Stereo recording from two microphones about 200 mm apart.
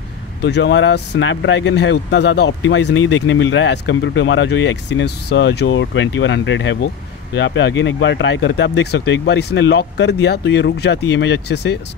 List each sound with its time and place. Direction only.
0.4 s speech: 60° left (ahead or behind)